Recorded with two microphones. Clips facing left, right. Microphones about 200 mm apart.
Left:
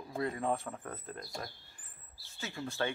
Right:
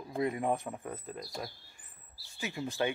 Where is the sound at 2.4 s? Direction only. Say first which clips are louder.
Right 3 dB; 15° right (ahead or behind).